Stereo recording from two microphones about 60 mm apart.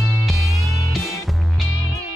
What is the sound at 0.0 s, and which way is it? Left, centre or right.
Music, centre.